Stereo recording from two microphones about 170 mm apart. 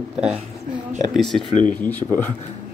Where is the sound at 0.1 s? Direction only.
5° right (ahead or behind); by 2.0 s 10° left (ahead or behind).